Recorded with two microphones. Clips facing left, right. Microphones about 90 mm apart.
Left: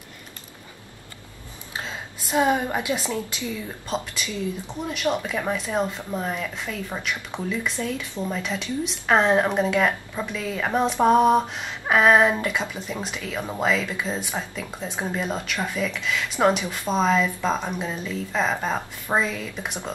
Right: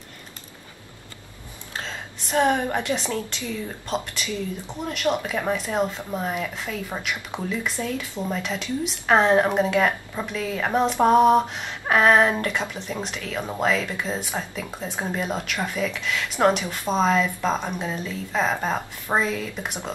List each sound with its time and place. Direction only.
1.8 s a woman's voice: 10° left (ahead or behind)